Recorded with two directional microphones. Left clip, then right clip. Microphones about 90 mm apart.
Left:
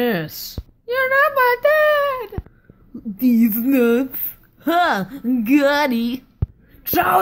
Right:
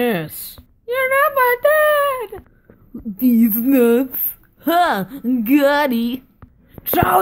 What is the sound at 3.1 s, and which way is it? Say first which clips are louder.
Speech: right 1 dB; 35° right (ahead or behind).